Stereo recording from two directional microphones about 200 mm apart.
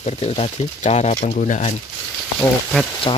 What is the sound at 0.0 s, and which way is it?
Speech, 30° left (ahead or behind).